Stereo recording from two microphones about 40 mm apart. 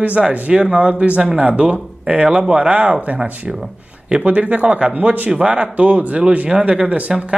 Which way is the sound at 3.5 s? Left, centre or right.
Right.